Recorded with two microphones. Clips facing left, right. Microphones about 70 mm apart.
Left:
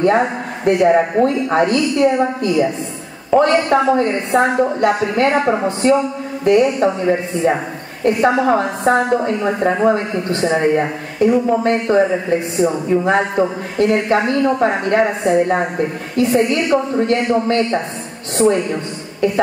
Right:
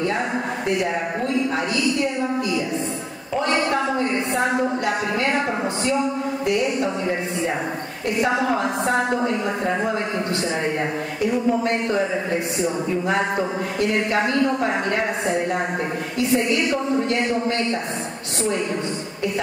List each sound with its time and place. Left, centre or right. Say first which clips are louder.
0.0 s a man's voice: left 8 dB; left
8.0 s a woman's voice: left 7 dB; left